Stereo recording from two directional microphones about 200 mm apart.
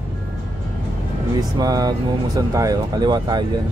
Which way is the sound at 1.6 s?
20° right (ahead or behind).